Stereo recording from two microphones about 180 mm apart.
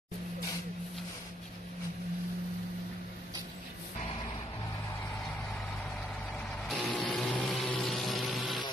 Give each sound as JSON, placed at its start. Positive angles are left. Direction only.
{"t": 6.3, "sound": "vehicle", "side_deg": 5}